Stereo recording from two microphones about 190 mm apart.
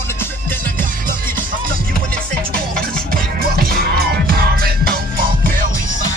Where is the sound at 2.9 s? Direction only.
50° right (ahead or behind).